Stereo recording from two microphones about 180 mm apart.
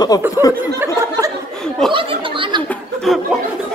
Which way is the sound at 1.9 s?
30° right (ahead or behind).